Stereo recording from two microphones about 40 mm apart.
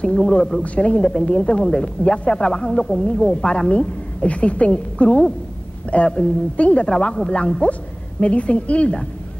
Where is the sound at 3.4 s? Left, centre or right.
Left.